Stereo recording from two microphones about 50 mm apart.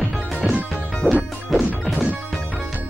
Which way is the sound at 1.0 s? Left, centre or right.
Centre.